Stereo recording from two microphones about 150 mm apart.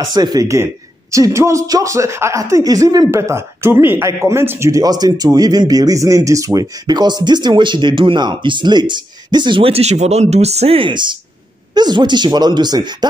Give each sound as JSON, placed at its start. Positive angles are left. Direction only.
{"t": 0.1, "sound": "speech", "side_deg": -25}